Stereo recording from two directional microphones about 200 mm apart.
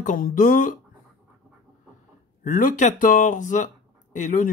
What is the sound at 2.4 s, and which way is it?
Speech, 40° left (ahead or behind).